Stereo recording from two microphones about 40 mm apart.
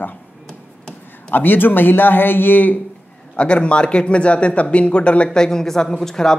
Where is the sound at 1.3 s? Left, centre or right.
Left.